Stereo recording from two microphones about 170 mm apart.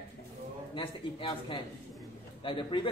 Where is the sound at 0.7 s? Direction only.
30° left (ahead or behind).